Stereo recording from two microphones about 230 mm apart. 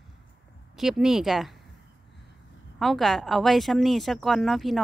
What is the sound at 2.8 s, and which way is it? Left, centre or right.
Speech, centre.